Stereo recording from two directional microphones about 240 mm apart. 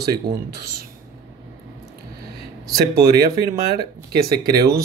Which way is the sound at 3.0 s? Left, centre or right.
Right.